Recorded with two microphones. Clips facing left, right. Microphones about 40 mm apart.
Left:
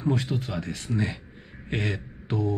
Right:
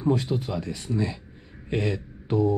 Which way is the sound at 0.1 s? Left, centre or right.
Left.